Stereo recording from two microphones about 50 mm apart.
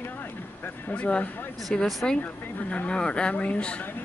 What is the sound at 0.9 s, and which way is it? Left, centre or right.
Speech, left.